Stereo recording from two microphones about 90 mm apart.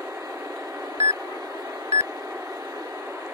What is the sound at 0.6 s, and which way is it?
Beep, 35° right (ahead or behind).